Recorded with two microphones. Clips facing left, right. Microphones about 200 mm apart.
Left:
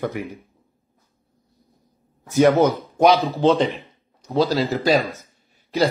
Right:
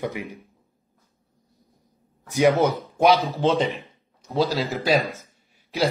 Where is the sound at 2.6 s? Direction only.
Centre (ahead or behind).